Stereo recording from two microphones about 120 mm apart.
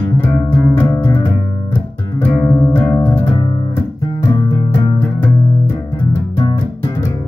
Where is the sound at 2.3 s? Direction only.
30° left (ahead or behind).